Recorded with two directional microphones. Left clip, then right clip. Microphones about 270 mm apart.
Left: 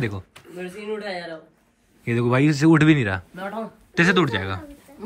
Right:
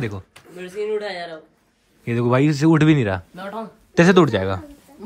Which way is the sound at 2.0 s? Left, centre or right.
Centre.